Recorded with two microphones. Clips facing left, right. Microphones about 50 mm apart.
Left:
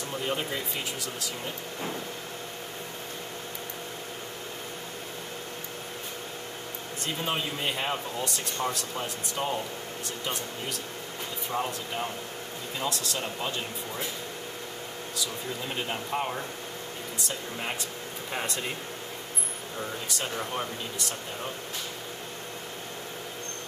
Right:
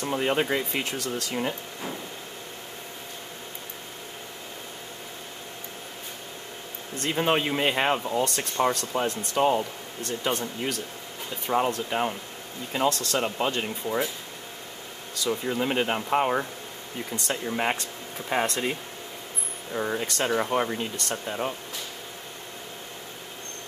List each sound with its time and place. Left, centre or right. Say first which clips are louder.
0.1 s speech: right 7 dB; right
7.1 s speech: right 7 dB; right
11.5 s speech: right 7 dB; right
15.2 s speech: right 11 dB; right
17.3 s speech: right 9 dB; right
19.8 s speech: right 7 dB; right